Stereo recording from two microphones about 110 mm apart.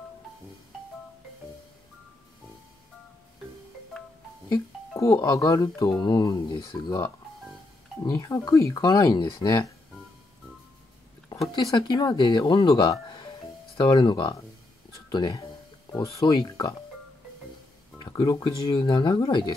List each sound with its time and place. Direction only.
4.5 s speech: 30° left (ahead or behind)
6.5 s speech: 45° left (ahead or behind)
8.1 s speech: 30° left (ahead or behind)
11.6 s speech: 40° left (ahead or behind)
13.1 s music: 50° left (ahead or behind)
15.0 s speech: 40° left (ahead or behind)
17.9 s speech: 40° left (ahead or behind)